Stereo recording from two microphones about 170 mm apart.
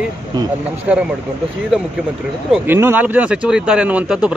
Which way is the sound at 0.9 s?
5° right (ahead or behind).